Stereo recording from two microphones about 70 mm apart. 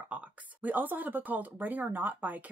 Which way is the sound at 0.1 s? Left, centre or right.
Right.